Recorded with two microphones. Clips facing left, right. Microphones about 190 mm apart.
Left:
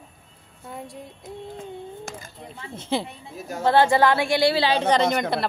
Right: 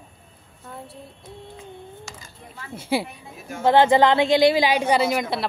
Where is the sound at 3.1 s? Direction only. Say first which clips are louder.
Left 2 dB; 40° left (ahead or behind).